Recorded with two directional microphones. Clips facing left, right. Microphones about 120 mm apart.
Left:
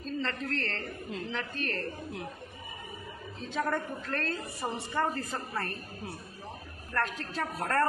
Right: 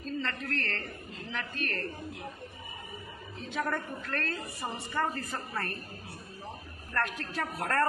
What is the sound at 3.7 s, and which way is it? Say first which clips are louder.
A woman's voice: left 2 dB; 15° left (ahead or behind).